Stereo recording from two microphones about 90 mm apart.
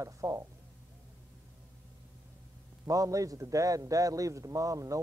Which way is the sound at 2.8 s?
40° right (ahead or behind).